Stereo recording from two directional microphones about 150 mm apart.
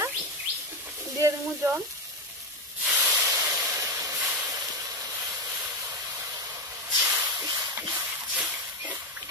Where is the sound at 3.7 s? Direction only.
20° right (ahead or behind).